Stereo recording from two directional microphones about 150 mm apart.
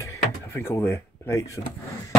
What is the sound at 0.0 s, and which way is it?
Drawer open or close, 20° left (ahead or behind).